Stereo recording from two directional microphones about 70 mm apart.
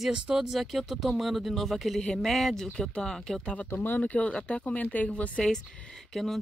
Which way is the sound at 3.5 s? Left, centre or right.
Left.